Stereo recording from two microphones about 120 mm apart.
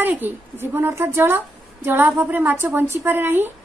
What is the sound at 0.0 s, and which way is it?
A woman's voice, 15° right (ahead or behind).